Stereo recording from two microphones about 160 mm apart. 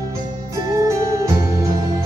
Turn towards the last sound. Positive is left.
turn(degrees=-20)  # may be behind; listen again after turning